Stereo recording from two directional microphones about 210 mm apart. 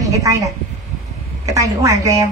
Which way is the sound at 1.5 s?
15° right (ahead or behind).